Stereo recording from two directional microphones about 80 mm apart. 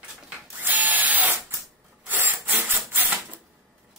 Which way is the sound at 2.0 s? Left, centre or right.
Right.